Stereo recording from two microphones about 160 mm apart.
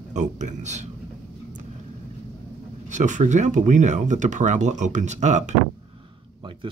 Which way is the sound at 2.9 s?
50° right (ahead or behind).